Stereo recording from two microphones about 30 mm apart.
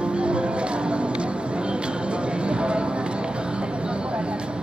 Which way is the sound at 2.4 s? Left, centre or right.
Right.